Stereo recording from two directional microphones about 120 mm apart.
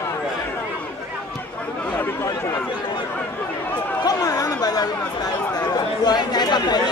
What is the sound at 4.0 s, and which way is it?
Chatter, 30° left (ahead or behind).